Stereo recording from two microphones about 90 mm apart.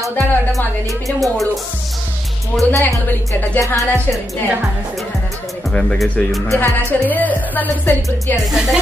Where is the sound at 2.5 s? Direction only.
15° left (ahead or behind).